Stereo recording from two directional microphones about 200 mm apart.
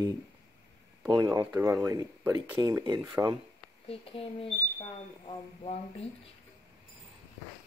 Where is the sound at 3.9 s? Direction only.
30° left (ahead or behind).